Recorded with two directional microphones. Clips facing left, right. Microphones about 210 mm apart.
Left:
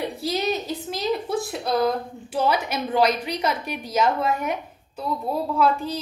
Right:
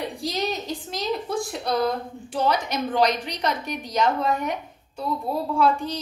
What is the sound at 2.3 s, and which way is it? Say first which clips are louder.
A woman's voice: left 1 dB; 5° left (ahead or behind).